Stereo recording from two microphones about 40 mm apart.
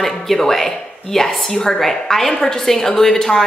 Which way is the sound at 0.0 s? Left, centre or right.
Centre.